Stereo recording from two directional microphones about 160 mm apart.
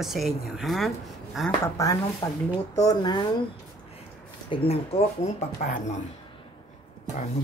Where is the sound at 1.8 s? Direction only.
20° left (ahead or behind).